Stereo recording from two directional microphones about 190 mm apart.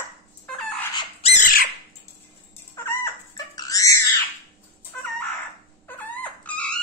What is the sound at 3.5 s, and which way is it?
Wild animals, 20° left (ahead or behind).